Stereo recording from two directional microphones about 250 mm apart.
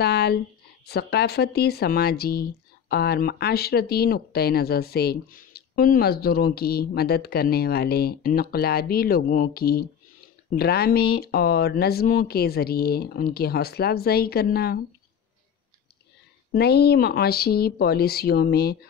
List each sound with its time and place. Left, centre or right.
0.0 s speech: left
16.5 s speech: left